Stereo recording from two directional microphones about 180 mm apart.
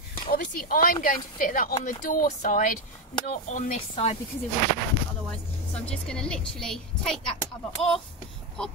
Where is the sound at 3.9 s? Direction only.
35° left (ahead or behind).